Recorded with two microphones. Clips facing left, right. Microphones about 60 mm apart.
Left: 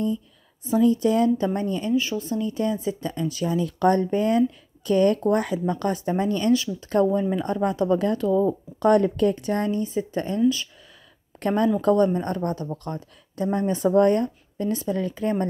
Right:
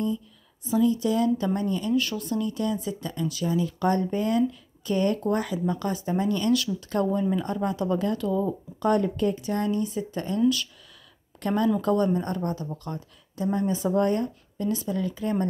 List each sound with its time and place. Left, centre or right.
0.7 s speech: left
2.0 s speech: left
8.8 s speech: left
9.7 s speech: left